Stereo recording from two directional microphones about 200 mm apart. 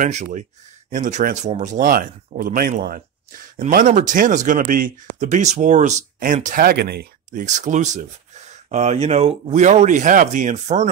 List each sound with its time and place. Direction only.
0.0 s speech: 35° right (ahead or behind); by 7.4 s 50° right (ahead or behind)
7.4 s speech: 35° right (ahead or behind)